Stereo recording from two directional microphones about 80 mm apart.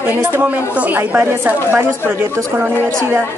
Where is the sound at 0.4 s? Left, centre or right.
Centre.